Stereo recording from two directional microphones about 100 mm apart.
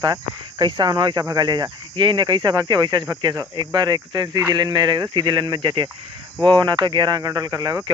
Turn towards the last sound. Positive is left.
turn(degrees=-40)  # may be behind; listen again after turning